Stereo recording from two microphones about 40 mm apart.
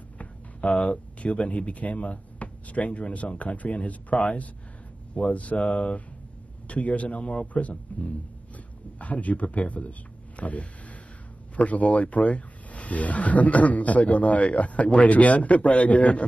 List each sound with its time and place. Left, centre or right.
0.2 s speech: left